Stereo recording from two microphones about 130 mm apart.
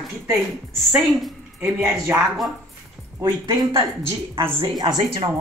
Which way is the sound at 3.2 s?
30° right (ahead or behind).